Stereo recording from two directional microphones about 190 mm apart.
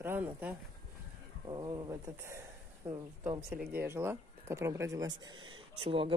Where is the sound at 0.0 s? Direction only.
10° right (ahead or behind).